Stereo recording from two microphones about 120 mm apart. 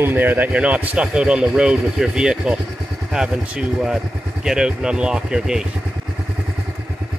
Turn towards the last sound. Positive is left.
turn(degrees=-5)  # may be behind; listen again after turning